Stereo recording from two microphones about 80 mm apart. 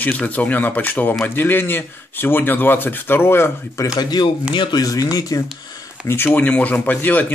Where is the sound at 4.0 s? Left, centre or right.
Left.